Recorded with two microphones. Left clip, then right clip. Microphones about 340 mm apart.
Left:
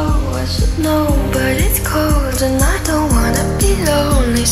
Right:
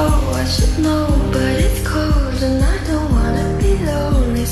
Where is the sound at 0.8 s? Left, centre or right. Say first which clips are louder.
Left 4 dB; centre.